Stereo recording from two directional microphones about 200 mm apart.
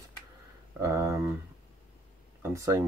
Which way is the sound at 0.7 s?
15° right (ahead or behind).